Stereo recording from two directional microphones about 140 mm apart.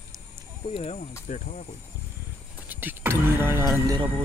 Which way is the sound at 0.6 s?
40° left (ahead or behind).